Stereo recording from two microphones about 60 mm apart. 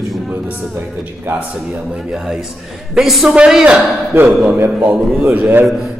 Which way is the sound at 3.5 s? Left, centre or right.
Centre.